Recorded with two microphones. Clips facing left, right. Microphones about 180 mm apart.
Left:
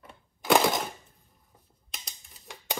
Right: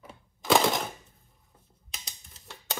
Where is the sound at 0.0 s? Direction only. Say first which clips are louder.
Even; centre (ahead or behind).